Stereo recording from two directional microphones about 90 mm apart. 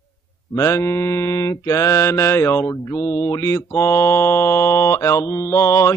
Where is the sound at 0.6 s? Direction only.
30° left (ahead or behind).